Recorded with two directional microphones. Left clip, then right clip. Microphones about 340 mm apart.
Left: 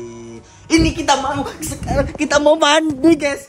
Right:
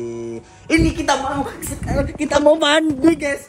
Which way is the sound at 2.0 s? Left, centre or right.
Centre.